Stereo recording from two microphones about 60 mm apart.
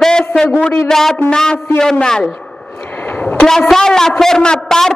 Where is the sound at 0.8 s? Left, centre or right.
Centre.